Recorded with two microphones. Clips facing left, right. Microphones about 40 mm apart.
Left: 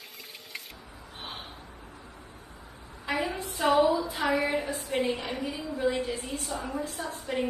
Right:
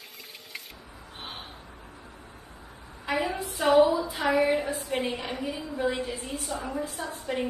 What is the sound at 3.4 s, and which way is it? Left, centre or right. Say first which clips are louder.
A woman's voice: right 3 dB; centre.